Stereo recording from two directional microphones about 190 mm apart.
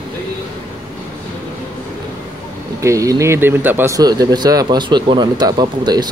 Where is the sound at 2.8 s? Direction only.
15° right (ahead or behind).